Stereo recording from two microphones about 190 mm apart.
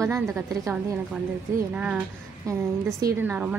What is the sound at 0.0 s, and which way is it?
Speech, 15° right (ahead or behind).